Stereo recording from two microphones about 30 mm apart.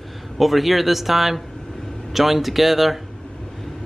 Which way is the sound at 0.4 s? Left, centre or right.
Centre.